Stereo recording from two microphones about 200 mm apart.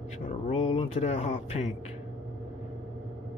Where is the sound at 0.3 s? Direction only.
30° left (ahead or behind).